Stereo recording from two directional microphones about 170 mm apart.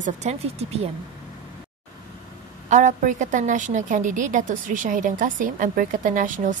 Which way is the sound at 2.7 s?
50° right (ahead or behind).